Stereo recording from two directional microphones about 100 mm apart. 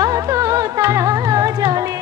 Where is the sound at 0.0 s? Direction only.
35° right (ahead or behind).